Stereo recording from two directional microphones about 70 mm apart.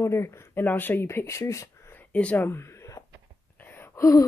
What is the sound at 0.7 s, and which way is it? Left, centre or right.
Speech, left.